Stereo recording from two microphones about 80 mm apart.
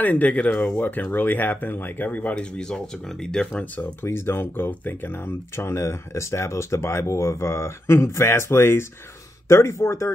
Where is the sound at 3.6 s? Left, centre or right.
Left.